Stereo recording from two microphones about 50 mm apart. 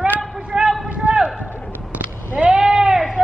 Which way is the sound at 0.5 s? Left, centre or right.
Centre.